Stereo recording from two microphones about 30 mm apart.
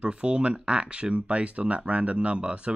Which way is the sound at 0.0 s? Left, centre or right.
Right.